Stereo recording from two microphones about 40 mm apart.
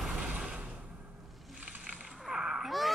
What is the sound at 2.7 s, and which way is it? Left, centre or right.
Wail, centre.